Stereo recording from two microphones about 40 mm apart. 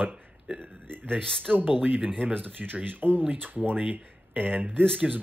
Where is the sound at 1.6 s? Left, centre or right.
Right.